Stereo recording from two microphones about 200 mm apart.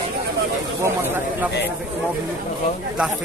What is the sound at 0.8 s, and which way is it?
Speech, 10° right (ahead or behind).